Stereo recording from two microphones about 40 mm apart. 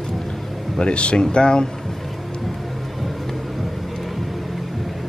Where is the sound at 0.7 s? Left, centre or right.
Left.